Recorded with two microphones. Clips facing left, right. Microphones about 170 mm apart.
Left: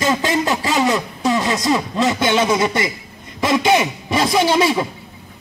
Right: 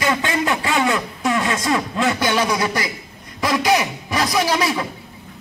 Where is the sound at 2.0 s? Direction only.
25° left (ahead or behind).